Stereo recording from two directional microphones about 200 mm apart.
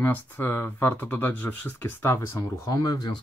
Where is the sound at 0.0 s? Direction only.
10° left (ahead or behind).